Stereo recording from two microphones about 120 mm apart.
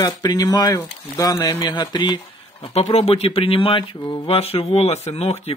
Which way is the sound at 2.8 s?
55° left (ahead or behind).